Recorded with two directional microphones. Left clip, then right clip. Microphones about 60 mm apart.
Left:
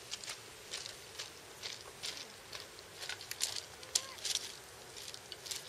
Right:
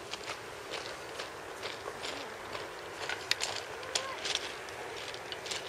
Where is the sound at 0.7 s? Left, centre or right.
Centre.